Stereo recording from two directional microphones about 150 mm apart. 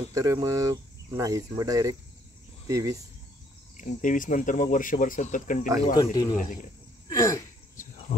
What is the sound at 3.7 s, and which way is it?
Speech, 60° left (ahead or behind).